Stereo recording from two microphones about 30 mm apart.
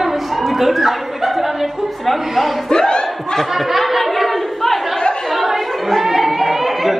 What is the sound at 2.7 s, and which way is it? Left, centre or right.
Battle cry, left.